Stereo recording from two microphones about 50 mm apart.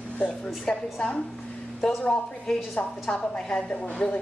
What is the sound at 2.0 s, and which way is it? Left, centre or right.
A woman's voice, centre.